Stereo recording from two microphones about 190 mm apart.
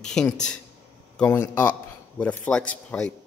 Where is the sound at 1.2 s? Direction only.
10° left (ahead or behind).